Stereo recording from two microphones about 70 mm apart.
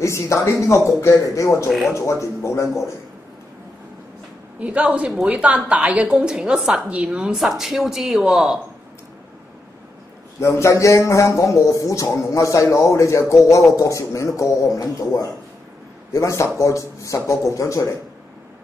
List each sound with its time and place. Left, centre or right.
0.0 s speech: left
4.6 s a woman's voice: centre
6.1 s a woman's voice: centre
10.4 s speech: left
14.8 s speech: left
16.1 s speech: left